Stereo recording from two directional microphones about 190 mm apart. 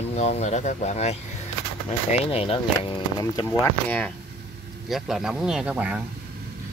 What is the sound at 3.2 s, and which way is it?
Speech, 15° left (ahead or behind).